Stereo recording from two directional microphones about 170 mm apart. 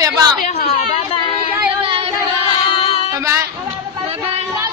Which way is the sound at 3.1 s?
15° right (ahead or behind).